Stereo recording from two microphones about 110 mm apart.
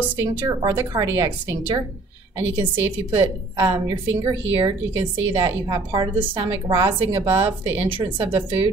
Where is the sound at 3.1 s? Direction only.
45° right (ahead or behind).